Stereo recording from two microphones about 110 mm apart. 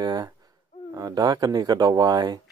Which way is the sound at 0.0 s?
40° right (ahead or behind).